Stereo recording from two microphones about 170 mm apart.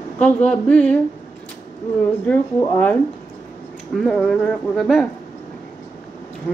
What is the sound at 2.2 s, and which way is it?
A woman's voice, 10° left (ahead or behind).